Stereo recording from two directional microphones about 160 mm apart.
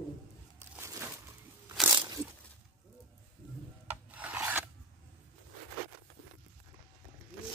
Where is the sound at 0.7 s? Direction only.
15° right (ahead or behind).